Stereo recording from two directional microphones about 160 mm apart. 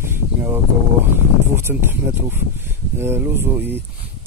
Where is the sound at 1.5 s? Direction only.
15° right (ahead or behind).